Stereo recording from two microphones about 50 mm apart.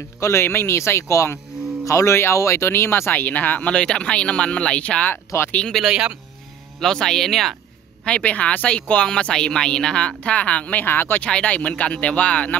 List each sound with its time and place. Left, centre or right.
0.2 s speech: left
3.2 s speech: left
3.7 s speech: left
5.3 s speech: left
5.9 s speech: centre
6.8 s speech: centre
8.0 s speech: left
10.9 s speech: left
11.1 s speech: left